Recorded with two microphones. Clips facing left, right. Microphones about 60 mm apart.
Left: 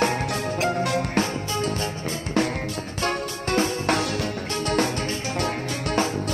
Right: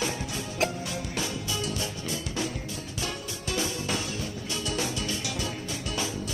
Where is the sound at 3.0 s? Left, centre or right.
Left.